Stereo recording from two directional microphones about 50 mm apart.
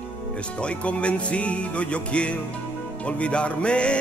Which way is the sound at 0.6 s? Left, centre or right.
Left.